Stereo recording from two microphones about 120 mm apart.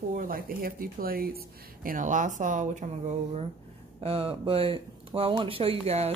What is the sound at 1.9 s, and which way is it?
Speech, 90° right.